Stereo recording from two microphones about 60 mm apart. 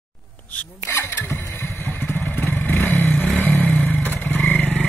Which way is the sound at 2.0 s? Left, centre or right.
Left.